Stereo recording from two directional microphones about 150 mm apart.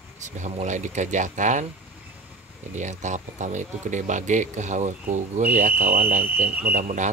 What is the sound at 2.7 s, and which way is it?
Speech, 50° right (ahead or behind).